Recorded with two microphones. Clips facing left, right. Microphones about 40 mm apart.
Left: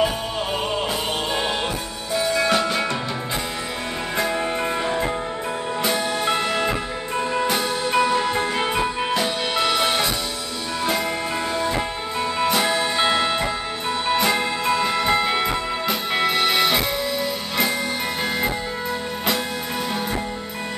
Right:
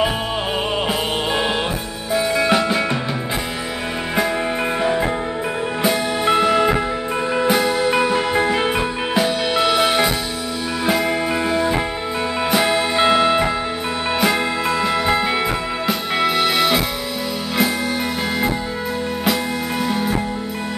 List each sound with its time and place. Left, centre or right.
2.1 s music: centre
4.8 s music: centre